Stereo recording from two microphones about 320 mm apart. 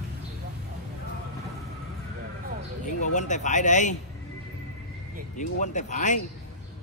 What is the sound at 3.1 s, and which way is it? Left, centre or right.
Speech, left.